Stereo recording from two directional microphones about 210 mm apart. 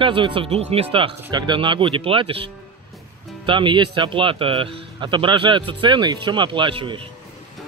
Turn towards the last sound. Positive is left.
turn(degrees=-25)  # may be behind; listen again after turning